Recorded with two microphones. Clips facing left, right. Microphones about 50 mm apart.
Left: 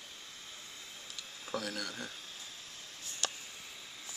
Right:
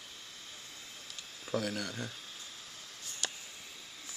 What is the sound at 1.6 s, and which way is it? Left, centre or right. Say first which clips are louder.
Speech: right 3 dB; right.